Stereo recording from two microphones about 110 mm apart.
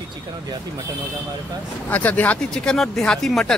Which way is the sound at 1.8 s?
15° left (ahead or behind).